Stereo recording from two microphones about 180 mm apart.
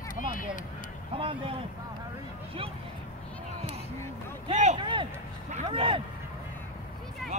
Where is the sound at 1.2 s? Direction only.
30° right (ahead or behind).